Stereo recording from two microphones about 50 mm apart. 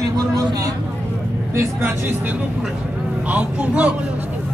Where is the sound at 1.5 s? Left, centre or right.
Right.